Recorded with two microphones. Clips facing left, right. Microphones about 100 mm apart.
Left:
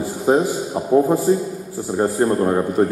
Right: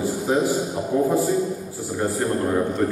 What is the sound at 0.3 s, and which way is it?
A man's voice, 40° left (ahead or behind).